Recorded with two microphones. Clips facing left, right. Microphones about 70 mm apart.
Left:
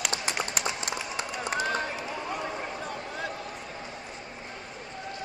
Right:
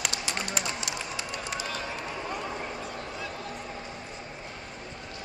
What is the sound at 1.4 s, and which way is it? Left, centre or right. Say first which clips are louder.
Run: left 9 dB; left.